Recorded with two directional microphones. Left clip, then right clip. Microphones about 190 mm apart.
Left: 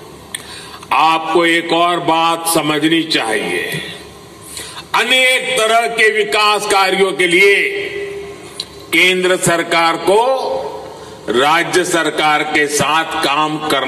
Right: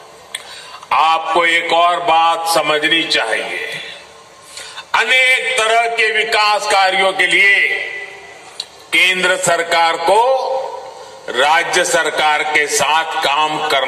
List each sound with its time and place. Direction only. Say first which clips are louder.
0.8 s a man's voice: left 1 dB; 40° left (ahead or behind)
8.5 s a man's voice: left 1 dB; 15° left (ahead or behind)